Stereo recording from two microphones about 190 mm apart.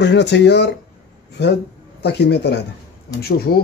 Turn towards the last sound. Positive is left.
turn(degrees=50)  # may be behind; listen again after turning